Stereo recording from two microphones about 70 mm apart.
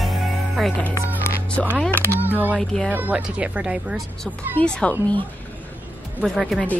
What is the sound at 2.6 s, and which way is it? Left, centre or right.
Speech, centre.